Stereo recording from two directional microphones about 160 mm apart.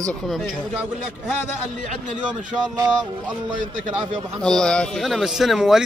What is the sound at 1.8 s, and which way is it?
Speech, 50° right (ahead or behind).